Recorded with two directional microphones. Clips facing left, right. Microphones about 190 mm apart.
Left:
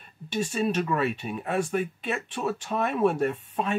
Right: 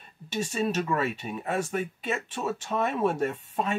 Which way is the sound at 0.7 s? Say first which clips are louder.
Left 1 dB; 5° right (ahead or behind).